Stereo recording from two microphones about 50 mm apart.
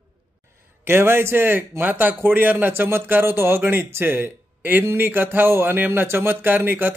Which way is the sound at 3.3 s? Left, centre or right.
Right.